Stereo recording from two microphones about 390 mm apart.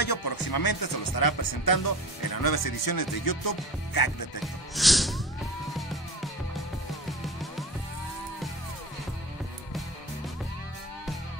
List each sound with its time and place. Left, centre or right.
0.0 s speech: left
4.7 s music: centre